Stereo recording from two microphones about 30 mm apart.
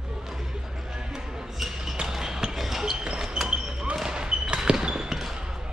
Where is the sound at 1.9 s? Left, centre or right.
Centre.